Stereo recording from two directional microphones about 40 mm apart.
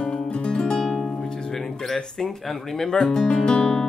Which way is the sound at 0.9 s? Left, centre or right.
Centre.